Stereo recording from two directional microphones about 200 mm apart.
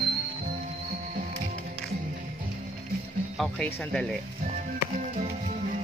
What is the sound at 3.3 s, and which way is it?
Speech, 5° left (ahead or behind).